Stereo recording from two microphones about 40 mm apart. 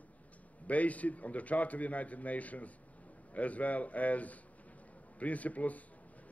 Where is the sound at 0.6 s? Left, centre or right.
Left.